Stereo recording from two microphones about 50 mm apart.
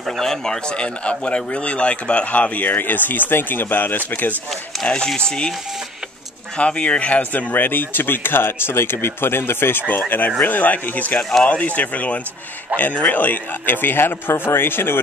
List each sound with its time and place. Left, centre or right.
0.0 s speech: centre; by 4.4 s left
4.8 s speech: centre
6.5 s speech: left
9.8 s speech: left
11.1 s speech: centre
11.4 s speech: left